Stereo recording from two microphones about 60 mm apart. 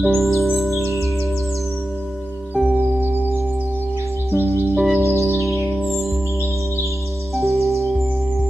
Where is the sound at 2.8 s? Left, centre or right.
Right.